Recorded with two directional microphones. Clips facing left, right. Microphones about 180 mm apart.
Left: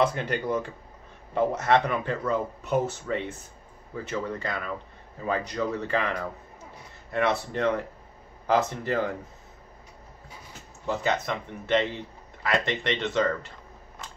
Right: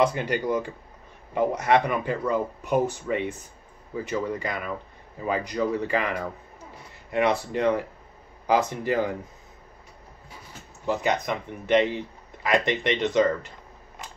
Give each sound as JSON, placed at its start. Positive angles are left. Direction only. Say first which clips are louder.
{"t": 0.0, "sound": "speech", "louder": "right 2 dB", "side_deg": -5}
{"t": 10.9, "sound": "speech", "louder": "right 2 dB", "side_deg": -15}